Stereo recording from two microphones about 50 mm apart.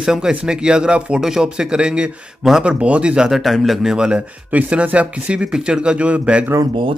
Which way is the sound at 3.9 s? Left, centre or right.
Centre.